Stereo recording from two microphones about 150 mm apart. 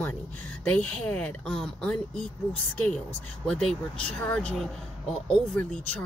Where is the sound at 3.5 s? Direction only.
5° left (ahead or behind).